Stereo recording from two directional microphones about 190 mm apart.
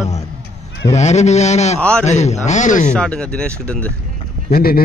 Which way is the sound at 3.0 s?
5° left (ahead or behind).